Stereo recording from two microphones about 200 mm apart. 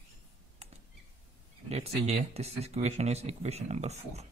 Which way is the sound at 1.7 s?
30° right (ahead or behind).